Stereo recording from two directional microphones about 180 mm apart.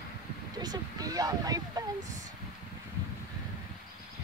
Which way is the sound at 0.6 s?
20° right (ahead or behind).